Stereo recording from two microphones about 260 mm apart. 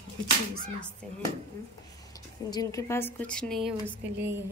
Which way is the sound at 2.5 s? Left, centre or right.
Centre.